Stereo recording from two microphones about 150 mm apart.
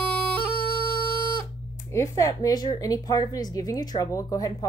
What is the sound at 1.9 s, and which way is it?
A woman's voice, 20° left (ahead or behind).